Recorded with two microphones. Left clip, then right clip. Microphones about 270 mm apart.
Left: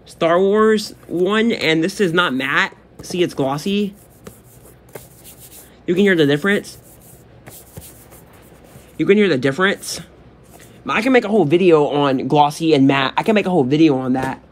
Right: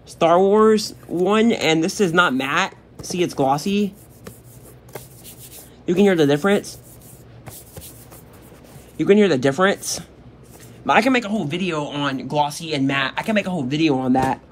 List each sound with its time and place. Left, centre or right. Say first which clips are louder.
0.2 s speech: even; centre
5.9 s speech: left 2 dB; centre
8.9 s speech: left 1 dB; centre